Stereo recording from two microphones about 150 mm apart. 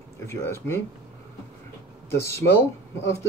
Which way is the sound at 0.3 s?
15° left (ahead or behind).